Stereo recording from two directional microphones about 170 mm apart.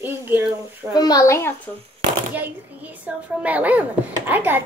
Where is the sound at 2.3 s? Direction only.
10° right (ahead or behind).